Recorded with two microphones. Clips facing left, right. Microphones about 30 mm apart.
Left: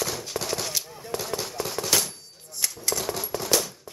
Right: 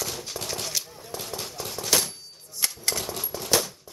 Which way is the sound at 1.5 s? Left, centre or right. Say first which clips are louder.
Left 4 dB; centre.